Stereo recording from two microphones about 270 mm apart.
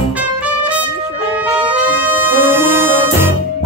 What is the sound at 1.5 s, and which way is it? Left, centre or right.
Music, centre.